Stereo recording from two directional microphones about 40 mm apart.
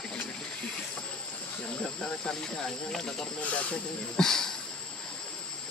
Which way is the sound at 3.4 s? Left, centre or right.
Left.